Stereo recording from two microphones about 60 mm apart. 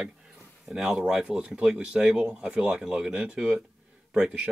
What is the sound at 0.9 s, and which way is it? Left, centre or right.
A man's voice, centre.